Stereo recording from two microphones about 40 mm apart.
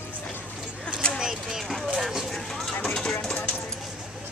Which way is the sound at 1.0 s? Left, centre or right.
Left.